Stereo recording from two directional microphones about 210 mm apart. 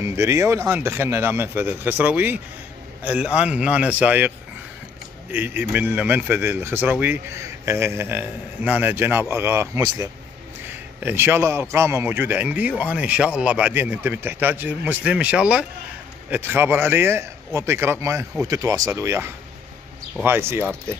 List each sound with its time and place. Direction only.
0.0 s speech: 15° right (ahead or behind)
5.3 s a man's voice: 10° right (ahead or behind)